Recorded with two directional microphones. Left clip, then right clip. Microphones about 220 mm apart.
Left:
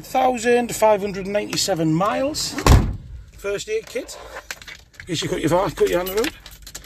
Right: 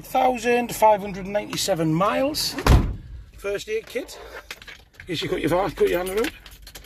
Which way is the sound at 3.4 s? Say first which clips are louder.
Left 2 dB; 10° left (ahead or behind).